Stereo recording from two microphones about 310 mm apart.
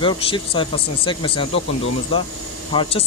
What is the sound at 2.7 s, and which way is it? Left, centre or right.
Speech, centre.